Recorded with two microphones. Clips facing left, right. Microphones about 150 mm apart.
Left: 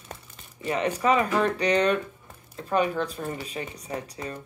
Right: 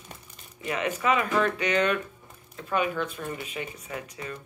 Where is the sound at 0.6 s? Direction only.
35° left (ahead or behind).